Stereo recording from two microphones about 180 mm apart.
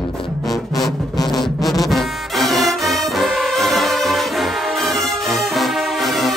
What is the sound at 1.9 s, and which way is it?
Music, centre (ahead or behind).